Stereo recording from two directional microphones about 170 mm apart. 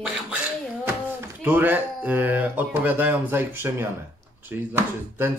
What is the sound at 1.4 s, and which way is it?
Speech, 10° right (ahead or behind).